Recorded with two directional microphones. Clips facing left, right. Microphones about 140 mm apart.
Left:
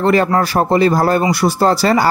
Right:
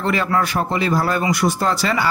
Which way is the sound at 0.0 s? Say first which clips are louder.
Left 6 dB; 40° left (ahead or behind).